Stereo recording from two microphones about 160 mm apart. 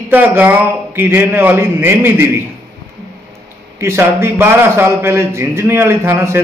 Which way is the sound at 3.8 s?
15° right (ahead or behind).